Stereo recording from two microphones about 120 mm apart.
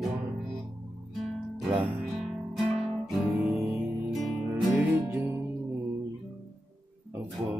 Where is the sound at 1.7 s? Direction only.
15° right (ahead or behind).